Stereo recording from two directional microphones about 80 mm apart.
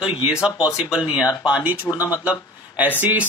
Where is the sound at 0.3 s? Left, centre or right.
Centre.